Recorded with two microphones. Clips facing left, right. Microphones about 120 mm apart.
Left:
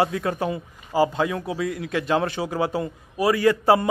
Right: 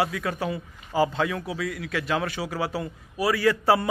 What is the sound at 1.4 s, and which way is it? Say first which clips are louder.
A man's voice: left 4 dB; 25° left (ahead or behind).